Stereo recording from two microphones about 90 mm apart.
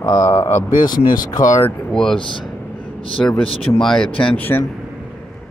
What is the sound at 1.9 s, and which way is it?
Speech, 5° left (ahead or behind).